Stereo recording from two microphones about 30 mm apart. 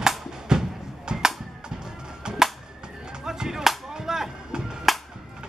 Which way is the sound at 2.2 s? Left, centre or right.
Right.